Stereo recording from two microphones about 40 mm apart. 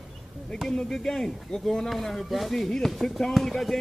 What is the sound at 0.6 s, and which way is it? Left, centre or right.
Speech, centre.